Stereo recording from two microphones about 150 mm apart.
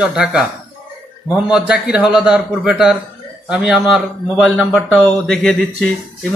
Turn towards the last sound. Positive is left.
turn(degrees=0)  # may be behind; listen again after turning